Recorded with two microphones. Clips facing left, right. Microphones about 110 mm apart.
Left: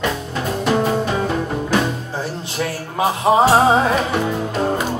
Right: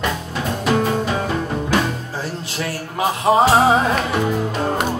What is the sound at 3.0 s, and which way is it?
Music, 20° left (ahead or behind).